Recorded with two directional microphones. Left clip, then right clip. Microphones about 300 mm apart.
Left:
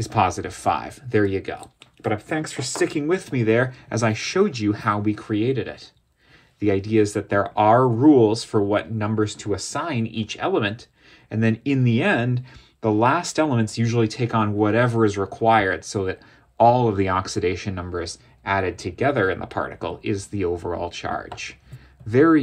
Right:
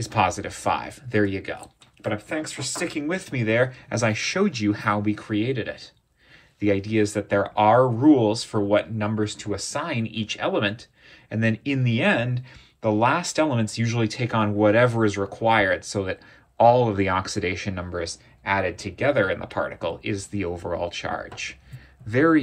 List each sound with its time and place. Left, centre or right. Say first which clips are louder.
0.0 s speech: left 2 dB; left